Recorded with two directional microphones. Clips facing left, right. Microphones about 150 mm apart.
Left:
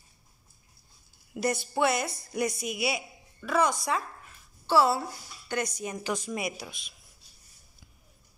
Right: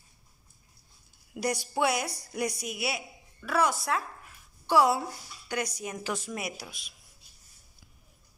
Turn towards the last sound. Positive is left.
turn(degrees=-10)  # may be behind; listen again after turning